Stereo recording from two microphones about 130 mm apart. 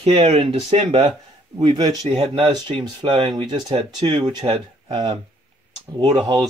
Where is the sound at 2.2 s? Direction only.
40° right (ahead or behind).